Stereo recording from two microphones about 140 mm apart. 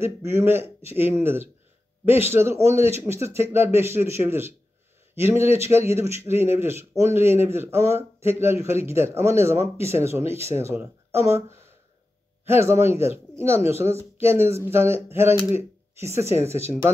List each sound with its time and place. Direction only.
0.0 s a man's voice: 15° right (ahead or behind)
12.4 s a man's voice: 15° right (ahead or behind)